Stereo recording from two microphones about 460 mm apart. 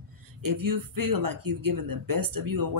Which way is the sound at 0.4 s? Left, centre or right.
Right.